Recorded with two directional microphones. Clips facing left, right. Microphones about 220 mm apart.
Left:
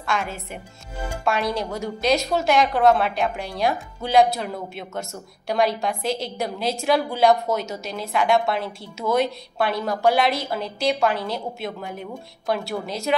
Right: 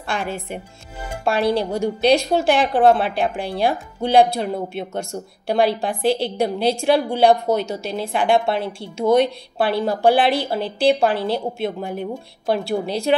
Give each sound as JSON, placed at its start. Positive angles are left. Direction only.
{"t": 0.0, "sound": "a woman's voice", "side_deg": -30}